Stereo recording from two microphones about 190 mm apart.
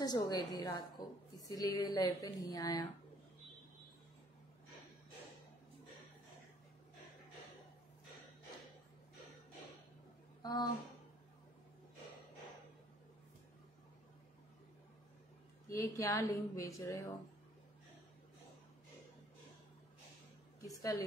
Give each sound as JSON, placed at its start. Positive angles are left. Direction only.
{"t": 0.0, "sound": "speech", "side_deg": 20}
{"t": 10.4, "sound": "speech", "side_deg": 20}
{"t": 15.7, "sound": "a woman's voice", "side_deg": 15}
{"t": 20.6, "sound": "a woman's voice", "side_deg": 20}